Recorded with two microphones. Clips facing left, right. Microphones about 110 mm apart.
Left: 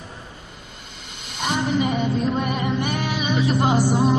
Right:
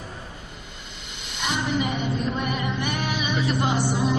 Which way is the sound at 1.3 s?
40° left (ahead or behind).